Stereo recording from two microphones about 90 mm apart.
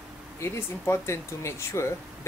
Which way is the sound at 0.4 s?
30° left (ahead or behind).